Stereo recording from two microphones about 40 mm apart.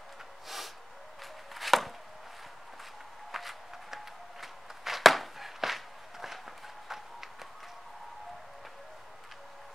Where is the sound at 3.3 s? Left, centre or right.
Centre.